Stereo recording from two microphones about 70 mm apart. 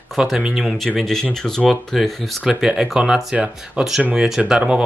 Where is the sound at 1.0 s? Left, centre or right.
Centre.